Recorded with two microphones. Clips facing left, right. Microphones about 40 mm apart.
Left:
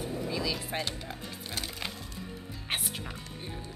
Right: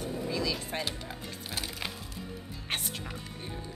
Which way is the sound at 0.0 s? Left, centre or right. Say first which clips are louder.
Even; centre.